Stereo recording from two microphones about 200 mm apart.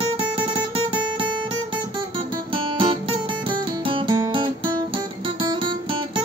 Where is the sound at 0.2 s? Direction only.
25° right (ahead or behind).